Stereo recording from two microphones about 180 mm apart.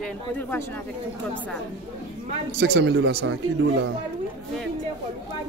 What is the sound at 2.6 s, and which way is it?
Speech, 70° right (ahead or behind).